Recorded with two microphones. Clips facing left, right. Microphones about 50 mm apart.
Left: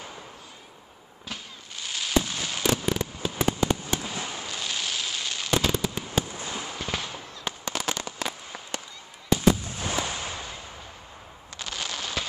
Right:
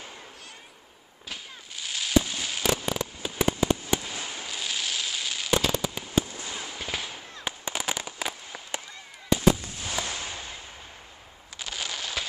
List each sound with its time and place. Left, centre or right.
1.3 s fireworks: centre
4.0 s fireworks: centre
4.5 s fireworks: centre
6.5 s fireworks: centre
6.8 s fireworks: centre
9.9 s fireworks: centre
11.5 s fireworks: centre